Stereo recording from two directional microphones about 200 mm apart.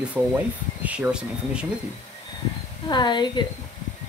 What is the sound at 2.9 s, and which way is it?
Speech, 20° left (ahead or behind).